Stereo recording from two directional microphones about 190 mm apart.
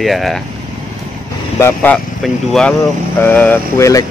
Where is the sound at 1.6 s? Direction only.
15° left (ahead or behind).